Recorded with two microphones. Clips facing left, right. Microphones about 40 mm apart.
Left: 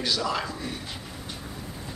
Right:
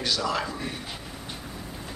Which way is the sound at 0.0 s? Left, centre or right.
Centre.